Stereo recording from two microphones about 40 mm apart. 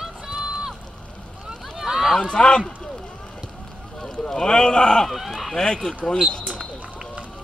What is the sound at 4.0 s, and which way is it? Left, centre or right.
Speech, centre.